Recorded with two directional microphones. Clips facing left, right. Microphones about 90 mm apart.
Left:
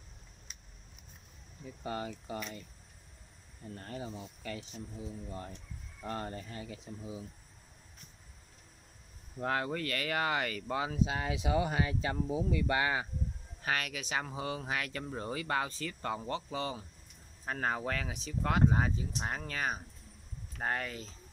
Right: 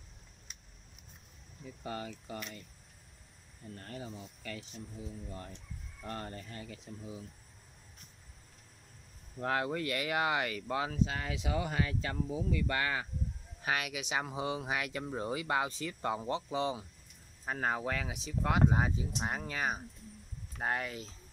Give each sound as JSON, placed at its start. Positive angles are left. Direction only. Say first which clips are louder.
{"t": 1.8, "sound": "speech", "louder": "left 3 dB", "side_deg": 30}
{"t": 3.7, "sound": "speech", "louder": "left 2 dB", "side_deg": 25}
{"t": 9.4, "sound": "speech", "louder": "even", "side_deg": 0}
{"t": 10.9, "sound": "speech", "louder": "left 2 dB", "side_deg": 15}
{"t": 13.6, "sound": "speech", "louder": "even", "side_deg": -5}
{"t": 17.5, "sound": "speech", "louder": "even", "side_deg": -5}